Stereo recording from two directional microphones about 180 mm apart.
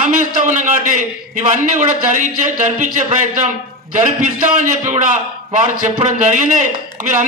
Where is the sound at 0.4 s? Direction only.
45° right (ahead or behind).